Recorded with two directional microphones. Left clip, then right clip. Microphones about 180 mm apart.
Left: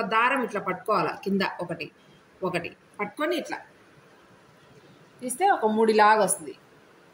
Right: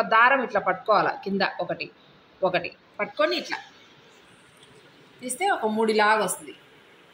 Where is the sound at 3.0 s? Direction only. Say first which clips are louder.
Right 4 dB; 10° left (ahead or behind).